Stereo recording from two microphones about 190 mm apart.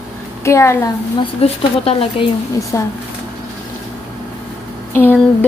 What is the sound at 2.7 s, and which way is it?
Speech, 15° left (ahead or behind).